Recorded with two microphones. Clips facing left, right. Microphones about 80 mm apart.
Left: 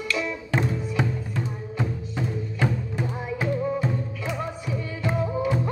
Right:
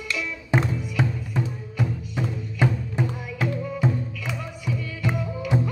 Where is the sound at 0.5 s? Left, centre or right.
Centre.